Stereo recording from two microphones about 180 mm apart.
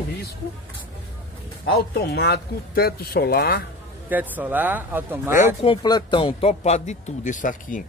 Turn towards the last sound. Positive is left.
turn(degrees=45)  # may be behind; listen again after turning